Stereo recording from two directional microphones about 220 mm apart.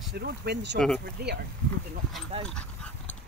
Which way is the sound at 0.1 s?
50° right (ahead or behind).